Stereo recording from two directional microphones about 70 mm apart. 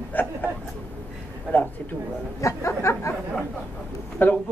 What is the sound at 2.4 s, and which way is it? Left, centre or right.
Speech, left.